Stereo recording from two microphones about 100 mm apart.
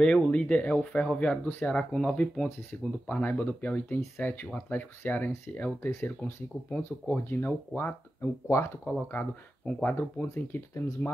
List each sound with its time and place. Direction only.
0.0 s speech: 10° left (ahead or behind); by 8.7 s 30° left (ahead or behind)
9.7 s speech: 15° left (ahead or behind)